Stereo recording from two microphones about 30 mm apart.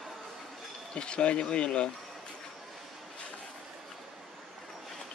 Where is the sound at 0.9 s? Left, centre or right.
Left.